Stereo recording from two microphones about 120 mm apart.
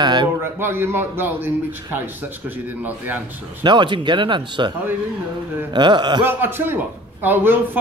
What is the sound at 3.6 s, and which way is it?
Speech, 40° right (ahead or behind).